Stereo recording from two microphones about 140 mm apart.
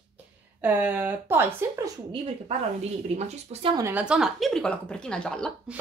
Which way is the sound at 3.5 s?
40° right (ahead or behind).